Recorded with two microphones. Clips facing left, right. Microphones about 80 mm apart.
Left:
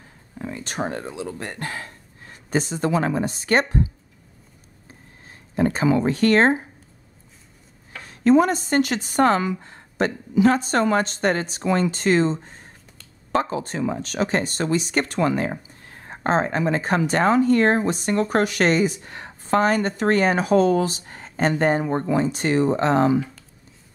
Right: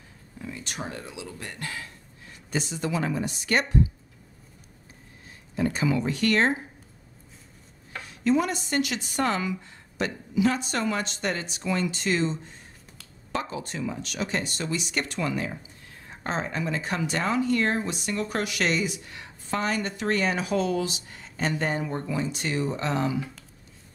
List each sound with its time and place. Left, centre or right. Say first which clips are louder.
0.4 s speech: left 8 dB; left
5.6 s speech: left 6 dB; left
8.1 s speech: left 8 dB; left